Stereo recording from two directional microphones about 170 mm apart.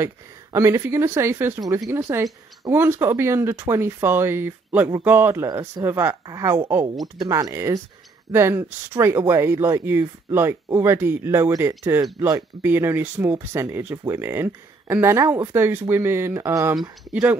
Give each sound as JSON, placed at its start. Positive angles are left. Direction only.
{"t": 0.0, "sound": "speech", "side_deg": -15}